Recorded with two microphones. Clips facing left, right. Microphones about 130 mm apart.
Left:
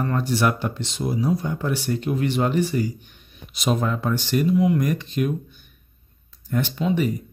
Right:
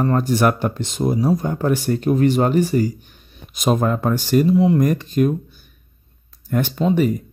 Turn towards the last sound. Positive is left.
turn(degrees=-40)  # may be behind; listen again after turning